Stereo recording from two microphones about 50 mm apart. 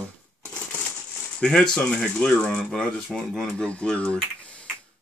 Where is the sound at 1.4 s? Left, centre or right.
Centre.